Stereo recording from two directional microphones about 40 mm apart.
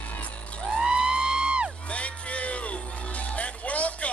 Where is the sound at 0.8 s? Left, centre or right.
Centre.